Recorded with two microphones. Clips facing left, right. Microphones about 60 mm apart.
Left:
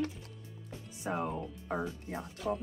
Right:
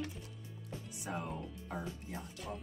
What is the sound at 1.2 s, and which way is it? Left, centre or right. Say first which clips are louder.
Speech: left 7 dB; centre.